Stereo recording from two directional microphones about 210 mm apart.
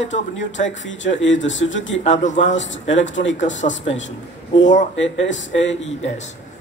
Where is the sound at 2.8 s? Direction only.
60° left (ahead or behind).